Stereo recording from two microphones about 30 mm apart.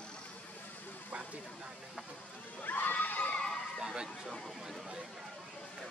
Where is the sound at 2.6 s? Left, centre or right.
Left.